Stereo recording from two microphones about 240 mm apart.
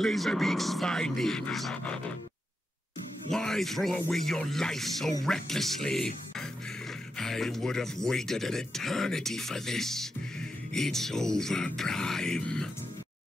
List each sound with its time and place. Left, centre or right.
0.0 s speech: centre
3.3 s speech: centre
7.2 s speech: centre